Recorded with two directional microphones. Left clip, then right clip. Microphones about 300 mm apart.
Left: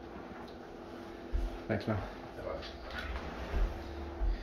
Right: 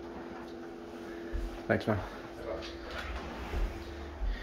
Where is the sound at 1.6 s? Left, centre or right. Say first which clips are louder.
Right 6 dB; centre.